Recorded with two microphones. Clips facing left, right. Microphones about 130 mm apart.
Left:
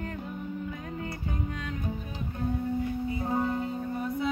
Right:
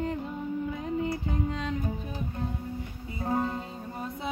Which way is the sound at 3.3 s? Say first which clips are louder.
Right 1 dB; 20° right (ahead or behind).